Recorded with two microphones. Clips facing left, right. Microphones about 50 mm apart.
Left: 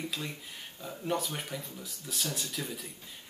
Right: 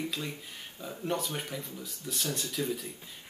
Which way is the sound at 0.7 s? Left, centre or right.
Centre.